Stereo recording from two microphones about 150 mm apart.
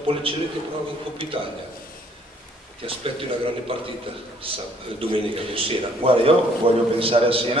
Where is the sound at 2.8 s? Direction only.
40° right (ahead or behind).